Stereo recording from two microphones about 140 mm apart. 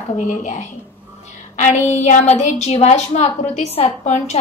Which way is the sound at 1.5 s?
60° left (ahead or behind).